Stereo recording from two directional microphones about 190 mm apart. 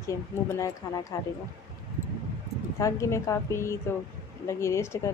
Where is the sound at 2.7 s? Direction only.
15° left (ahead or behind).